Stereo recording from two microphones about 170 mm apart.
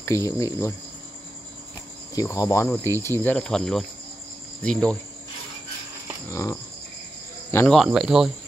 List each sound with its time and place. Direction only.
0.0 s speech: 15° left (ahead or behind)
2.1 s speech: 20° left (ahead or behind)
6.2 s speech: 15° left (ahead or behind)
7.5 s speech: 5° left (ahead or behind)